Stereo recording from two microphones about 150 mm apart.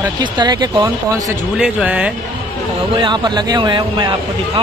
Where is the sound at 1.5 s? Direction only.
5° right (ahead or behind).